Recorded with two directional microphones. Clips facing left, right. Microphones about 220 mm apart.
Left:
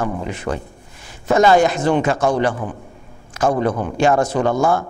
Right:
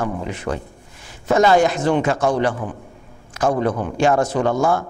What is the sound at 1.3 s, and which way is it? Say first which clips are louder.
A man's voice: left 1 dB; 25° left (ahead or behind).